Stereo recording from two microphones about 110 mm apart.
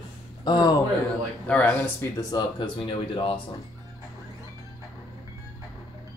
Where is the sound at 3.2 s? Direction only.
50° left (ahead or behind).